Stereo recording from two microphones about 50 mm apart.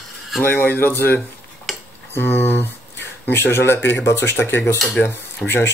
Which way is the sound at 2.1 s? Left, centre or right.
Left.